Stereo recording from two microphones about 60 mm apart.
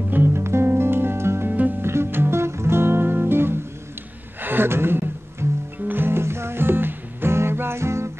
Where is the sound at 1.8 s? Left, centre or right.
Right.